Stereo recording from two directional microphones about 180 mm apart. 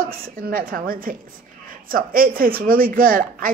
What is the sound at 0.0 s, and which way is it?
A woman's voice, 55° right (ahead or behind).